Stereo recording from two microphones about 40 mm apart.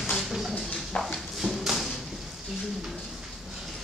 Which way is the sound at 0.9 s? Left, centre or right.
Left.